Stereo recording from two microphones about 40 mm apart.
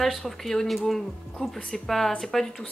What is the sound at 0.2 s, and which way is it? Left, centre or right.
Speech, centre.